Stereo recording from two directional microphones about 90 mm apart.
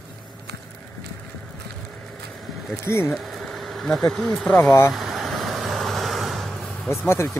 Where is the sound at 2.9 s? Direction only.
25° left (ahead or behind).